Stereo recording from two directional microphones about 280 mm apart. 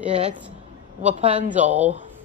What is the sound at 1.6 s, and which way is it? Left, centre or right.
Speech, centre.